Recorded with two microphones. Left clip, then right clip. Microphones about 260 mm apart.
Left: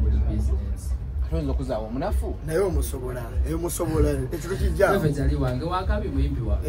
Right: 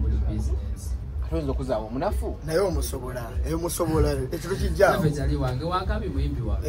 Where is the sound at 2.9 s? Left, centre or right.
Centre.